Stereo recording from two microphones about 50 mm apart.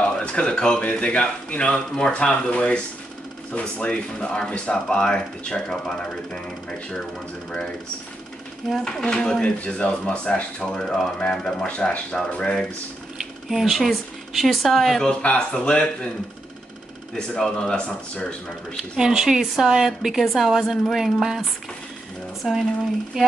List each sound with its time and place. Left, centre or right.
0.0 s a sound: left
0.9 s speech: left
9.1 s speech: centre
9.4 s speech: left
11.6 s speech: left
13.5 s speech: centre
15.2 s speech: centre
17.4 s speech: centre
18.9 s a woman's voice: centre
23.2 s a woman's voice: centre